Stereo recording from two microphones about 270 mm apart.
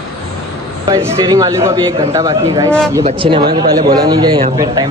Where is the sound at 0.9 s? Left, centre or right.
Centre.